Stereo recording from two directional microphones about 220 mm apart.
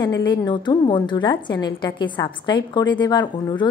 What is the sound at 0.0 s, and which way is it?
A woman's voice, 20° left (ahead or behind).